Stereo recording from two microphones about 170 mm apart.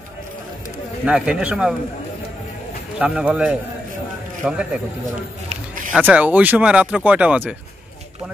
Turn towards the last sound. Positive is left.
turn(degrees=-10)  # may be behind; listen again after turning